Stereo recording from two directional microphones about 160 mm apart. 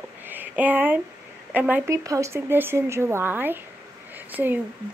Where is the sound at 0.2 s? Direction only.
10° right (ahead or behind).